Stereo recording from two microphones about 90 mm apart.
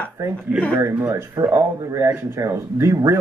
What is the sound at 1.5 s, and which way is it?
Speech, 35° right (ahead or behind).